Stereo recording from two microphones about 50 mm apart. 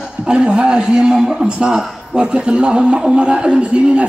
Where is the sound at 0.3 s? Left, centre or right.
Centre.